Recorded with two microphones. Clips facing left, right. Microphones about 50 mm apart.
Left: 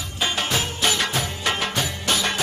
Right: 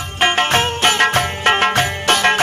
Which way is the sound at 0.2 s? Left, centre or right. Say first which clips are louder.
Right 9 dB; right.